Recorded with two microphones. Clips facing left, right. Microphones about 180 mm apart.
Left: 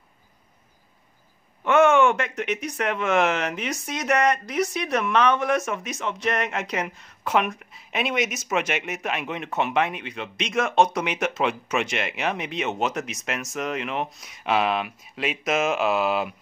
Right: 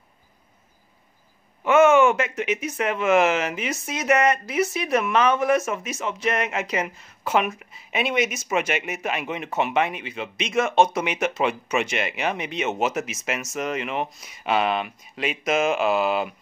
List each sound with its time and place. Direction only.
1.6 s speech: 5° right (ahead or behind)